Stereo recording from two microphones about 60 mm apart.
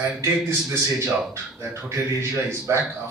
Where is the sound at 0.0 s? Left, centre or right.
Right.